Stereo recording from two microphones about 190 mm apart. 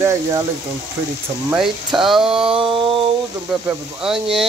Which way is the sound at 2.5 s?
25° right (ahead or behind).